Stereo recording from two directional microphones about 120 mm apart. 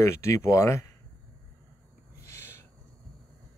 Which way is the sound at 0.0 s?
25° left (ahead or behind).